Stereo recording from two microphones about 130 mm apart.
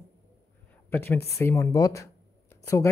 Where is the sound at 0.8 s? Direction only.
15° left (ahead or behind).